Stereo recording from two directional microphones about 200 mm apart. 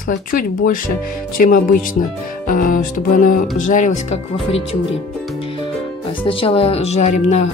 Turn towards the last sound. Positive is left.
turn(degrees=35)  # may be behind; listen again after turning